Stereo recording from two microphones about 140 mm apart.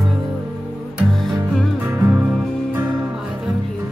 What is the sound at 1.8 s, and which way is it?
Music, 20° right (ahead or behind).